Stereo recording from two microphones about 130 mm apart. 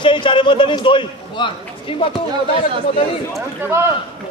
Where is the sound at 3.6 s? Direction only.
20° right (ahead or behind).